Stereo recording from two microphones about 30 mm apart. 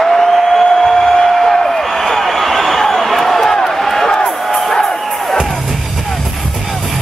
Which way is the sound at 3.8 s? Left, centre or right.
Centre.